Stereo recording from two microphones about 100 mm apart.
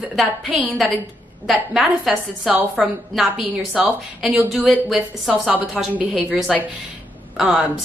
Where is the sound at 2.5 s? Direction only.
15° right (ahead or behind).